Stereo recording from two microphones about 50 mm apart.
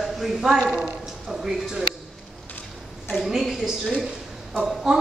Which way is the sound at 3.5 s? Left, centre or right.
Centre.